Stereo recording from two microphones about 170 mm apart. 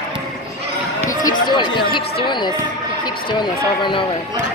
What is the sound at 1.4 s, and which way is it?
Music, 25° left (ahead or behind).